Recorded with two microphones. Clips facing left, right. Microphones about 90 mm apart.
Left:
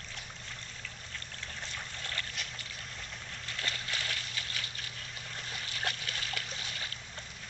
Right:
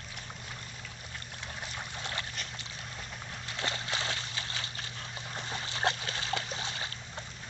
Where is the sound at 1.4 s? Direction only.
15° right (ahead or behind).